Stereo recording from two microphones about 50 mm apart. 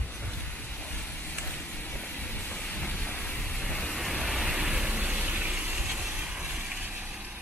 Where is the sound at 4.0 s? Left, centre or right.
Centre.